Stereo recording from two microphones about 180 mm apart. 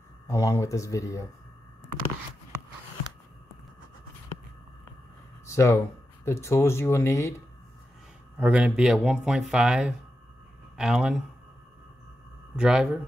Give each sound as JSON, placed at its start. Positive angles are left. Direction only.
{"t": 0.3, "sound": "speech", "side_deg": 20}
{"t": 5.5, "sound": "speech", "side_deg": 15}
{"t": 8.4, "sound": "speech", "side_deg": -5}
{"t": 12.5, "sound": "speech", "side_deg": -5}